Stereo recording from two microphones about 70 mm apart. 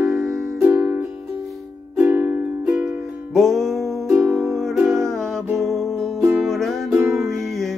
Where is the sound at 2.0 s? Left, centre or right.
Right.